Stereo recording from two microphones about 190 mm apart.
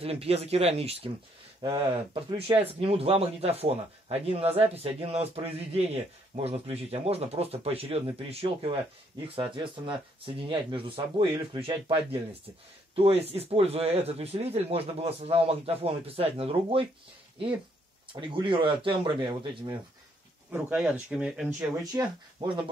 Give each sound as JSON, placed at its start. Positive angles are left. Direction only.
{"t": 0.0, "sound": "speech", "side_deg": -30}
{"t": 18.2, "sound": "speech", "side_deg": -25}
{"t": 20.5, "sound": "speech", "side_deg": -5}
{"t": 21.5, "sound": "speech", "side_deg": -20}